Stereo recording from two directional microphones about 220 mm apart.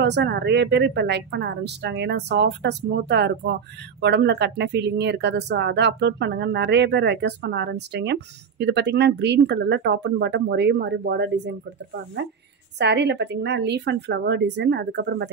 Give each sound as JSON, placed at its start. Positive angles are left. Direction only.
{"t": 0.0, "sound": "speech", "side_deg": -50}
{"t": 12.7, "sound": "speech", "side_deg": -50}